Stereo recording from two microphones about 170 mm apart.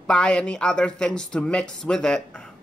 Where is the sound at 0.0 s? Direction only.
5° left (ahead or behind).